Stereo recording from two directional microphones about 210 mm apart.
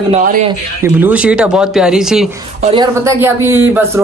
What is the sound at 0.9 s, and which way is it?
Speech, 5° right (ahead or behind).